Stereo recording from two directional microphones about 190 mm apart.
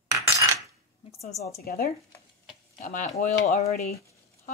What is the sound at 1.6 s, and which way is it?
Speech, 55° left (ahead or behind).